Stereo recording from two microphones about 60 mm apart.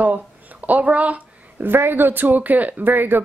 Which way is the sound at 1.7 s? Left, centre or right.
Right.